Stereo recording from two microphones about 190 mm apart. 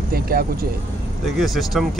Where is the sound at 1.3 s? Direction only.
Centre (ahead or behind).